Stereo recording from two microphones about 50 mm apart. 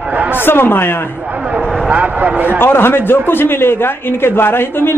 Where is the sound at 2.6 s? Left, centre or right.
Left.